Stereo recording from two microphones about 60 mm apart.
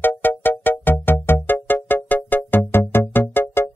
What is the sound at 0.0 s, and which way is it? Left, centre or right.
Music, left.